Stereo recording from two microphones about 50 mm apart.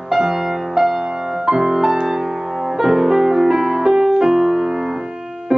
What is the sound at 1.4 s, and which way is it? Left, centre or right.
Music, centre.